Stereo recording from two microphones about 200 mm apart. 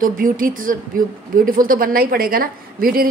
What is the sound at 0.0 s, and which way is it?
A woman's voice, 45° right (ahead or behind).